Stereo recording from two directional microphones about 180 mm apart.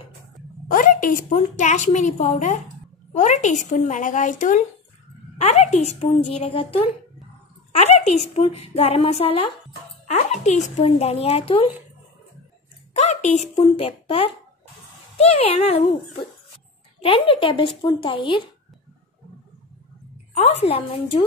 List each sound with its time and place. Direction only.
0.7 s a woman's voice: 50° left (ahead or behind); by 11.7 s 30° left (ahead or behind)
12.9 s a woman's voice: 40° left (ahead or behind)
17.0 s speech: 30° left (ahead or behind)
20.3 s a woman's voice: 35° left (ahead or behind)